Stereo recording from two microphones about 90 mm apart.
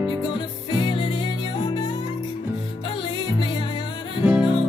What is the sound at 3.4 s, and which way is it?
Music, 65° left (ahead or behind).